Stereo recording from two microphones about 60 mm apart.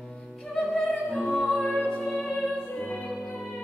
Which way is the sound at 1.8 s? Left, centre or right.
Centre.